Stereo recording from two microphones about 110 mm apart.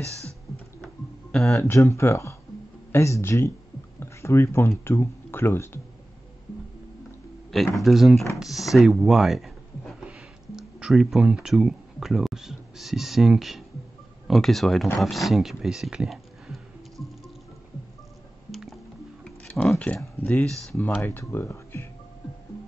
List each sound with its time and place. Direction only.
1.5 s speech: 25° left (ahead or behind)
7.5 s speech: centre (ahead or behind)
18.5 s music: centre (ahead or behind)
19.2 s a sound: 10° left (ahead or behind)
20.0 s speech: 20° left (ahead or behind)